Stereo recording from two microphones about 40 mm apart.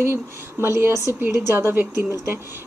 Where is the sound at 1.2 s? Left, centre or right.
Right.